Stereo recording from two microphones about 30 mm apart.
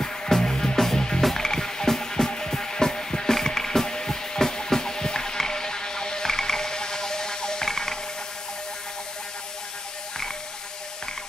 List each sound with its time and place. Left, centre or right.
0.0 s music: centre